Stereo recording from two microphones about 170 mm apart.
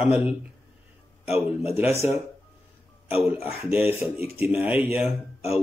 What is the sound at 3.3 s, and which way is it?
Speech, 15° right (ahead or behind).